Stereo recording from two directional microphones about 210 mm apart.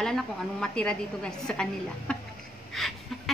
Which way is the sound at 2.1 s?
5° left (ahead or behind).